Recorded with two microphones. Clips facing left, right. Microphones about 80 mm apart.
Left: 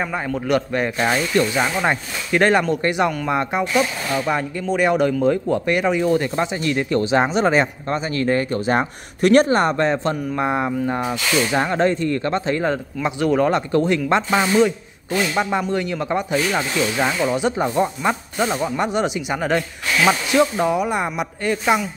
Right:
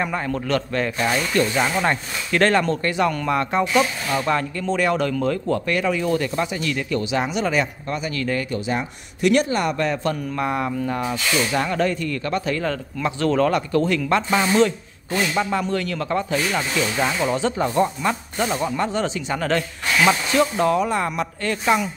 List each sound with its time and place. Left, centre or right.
0.0 s speech: centre